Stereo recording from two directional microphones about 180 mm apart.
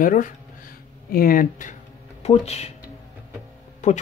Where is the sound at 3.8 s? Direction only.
40° left (ahead or behind).